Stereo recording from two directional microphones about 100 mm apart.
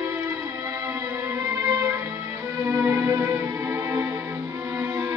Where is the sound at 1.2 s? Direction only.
25° right (ahead or behind).